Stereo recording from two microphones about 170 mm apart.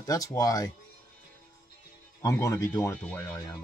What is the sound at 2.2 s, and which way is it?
Speech, 20° left (ahead or behind).